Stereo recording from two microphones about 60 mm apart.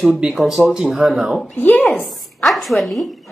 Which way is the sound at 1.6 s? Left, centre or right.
Left.